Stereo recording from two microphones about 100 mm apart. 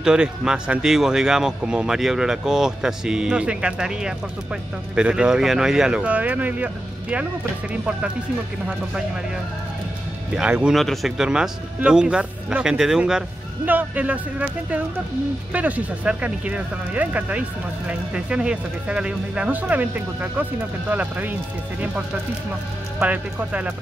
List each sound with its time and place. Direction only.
0.0 s speech: 10° right (ahead or behind)
10.3 s speech: 10° right (ahead or behind)
10.8 s speech: centre (ahead or behind)
13.7 s speech: 15° right (ahead or behind)
22.9 s speech: 15° right (ahead or behind)